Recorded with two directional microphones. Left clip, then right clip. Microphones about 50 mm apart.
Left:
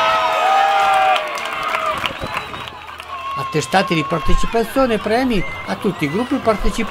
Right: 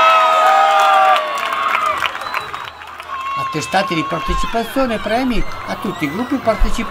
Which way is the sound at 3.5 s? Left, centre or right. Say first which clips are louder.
Left 3 dB; left.